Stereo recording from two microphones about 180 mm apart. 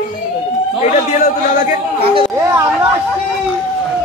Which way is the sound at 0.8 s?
40° left (ahead or behind).